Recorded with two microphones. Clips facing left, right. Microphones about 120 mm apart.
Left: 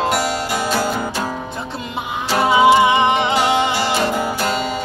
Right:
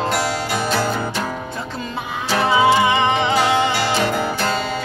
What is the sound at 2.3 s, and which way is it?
Music, 15° left (ahead or behind).